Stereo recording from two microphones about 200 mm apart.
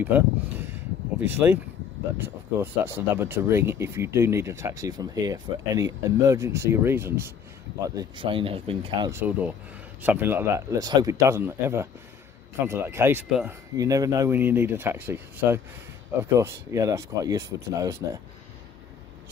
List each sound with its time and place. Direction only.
0.0 s speech: 10° right (ahead or behind); by 9.1 s 30° right (ahead or behind)
9.1 s speech: 10° right (ahead or behind)
13.7 s speech: 15° right (ahead or behind)